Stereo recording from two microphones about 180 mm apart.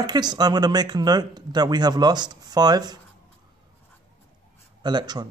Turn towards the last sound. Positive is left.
turn(degrees=-25)  # may be behind; listen again after turning